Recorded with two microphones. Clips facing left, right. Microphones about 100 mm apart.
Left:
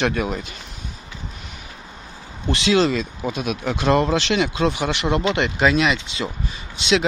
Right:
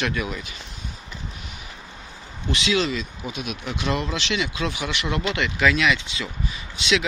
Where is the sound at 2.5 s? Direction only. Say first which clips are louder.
Left 5 dB; 40° left (ahead or behind).